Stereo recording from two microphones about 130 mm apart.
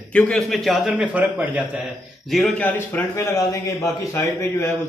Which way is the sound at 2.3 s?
5° left (ahead or behind).